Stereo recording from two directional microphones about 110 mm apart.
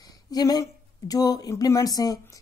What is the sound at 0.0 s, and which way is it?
A woman's voice, 35° left (ahead or behind).